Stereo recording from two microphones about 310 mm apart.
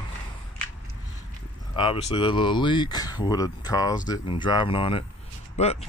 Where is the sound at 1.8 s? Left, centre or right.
Centre.